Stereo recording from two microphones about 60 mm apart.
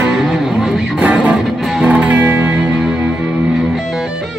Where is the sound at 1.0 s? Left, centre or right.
Right.